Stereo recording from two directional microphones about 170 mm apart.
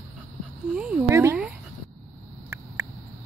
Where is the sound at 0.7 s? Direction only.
5° right (ahead or behind).